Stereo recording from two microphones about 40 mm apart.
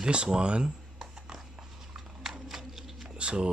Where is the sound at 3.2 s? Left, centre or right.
Right.